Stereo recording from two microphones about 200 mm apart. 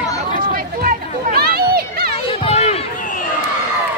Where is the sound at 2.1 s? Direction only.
30° left (ahead or behind).